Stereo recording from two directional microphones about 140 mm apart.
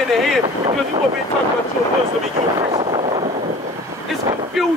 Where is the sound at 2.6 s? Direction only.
45° right (ahead or behind).